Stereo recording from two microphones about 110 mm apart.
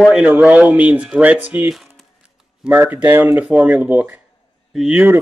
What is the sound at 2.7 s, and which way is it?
Speech, 20° right (ahead or behind).